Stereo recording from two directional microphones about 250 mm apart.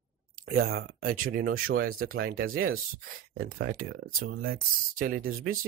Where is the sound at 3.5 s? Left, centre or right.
Right.